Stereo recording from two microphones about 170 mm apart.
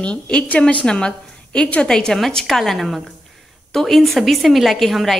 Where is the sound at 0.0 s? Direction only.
5° left (ahead or behind).